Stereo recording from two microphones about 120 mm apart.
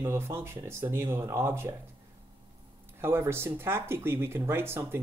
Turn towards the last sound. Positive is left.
turn(degrees=-20)  # may be behind; listen again after turning